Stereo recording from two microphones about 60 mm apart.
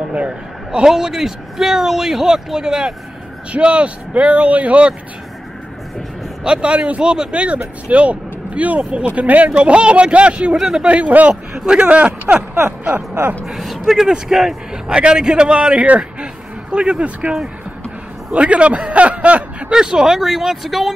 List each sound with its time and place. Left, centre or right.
0.1 s a man's voice: right
0.7 s a man's voice: centre
6.4 s a man's voice: centre
10.9 s a man's voice: right
13.5 s a man's voice: centre; by 19.4 s right
19.7 s a man's voice: centre